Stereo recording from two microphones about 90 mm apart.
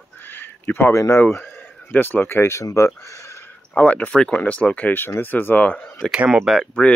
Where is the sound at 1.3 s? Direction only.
20° left (ahead or behind).